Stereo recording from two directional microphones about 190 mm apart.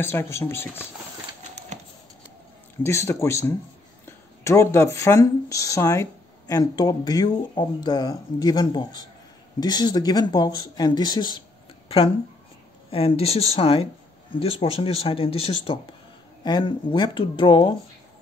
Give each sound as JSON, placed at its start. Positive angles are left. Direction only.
{"t": 0.0, "sound": "speech", "side_deg": 10}
{"t": 2.8, "sound": "speech", "side_deg": 15}
{"t": 12.9, "sound": "speech", "side_deg": 30}